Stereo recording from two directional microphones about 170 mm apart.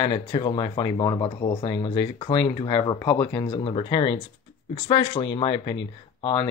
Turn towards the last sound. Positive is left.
turn(degrees=30)  # may be behind; listen again after turning